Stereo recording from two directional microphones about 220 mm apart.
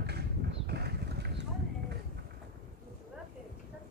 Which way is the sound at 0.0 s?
50° right (ahead or behind).